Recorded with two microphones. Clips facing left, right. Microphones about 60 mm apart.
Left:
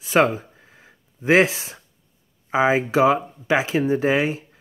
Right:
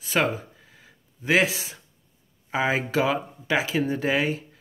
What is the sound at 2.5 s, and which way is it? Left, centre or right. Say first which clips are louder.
Speech: left 5 dB; left.